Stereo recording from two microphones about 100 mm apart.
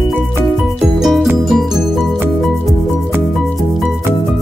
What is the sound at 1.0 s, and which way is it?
Music, 5° right (ahead or behind).